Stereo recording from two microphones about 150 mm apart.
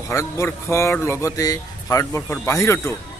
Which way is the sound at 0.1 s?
20° left (ahead or behind).